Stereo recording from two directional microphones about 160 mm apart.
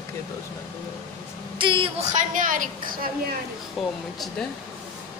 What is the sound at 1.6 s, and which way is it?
Speech, 30° right (ahead or behind).